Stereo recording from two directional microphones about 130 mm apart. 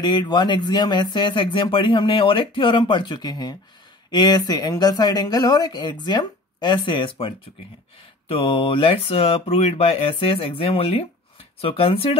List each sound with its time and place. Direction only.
0.0 s speech: 35° left (ahead or behind)